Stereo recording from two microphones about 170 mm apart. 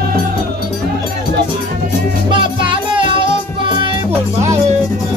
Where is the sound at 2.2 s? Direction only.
30° right (ahead or behind).